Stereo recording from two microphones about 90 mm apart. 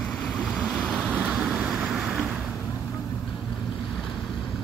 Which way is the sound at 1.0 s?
15° right (ahead or behind).